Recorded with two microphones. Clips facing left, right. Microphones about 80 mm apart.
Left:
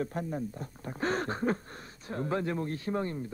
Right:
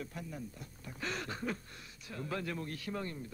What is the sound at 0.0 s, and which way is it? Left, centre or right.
Speech, left.